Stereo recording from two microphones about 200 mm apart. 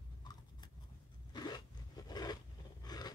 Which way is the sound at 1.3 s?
20° left (ahead or behind).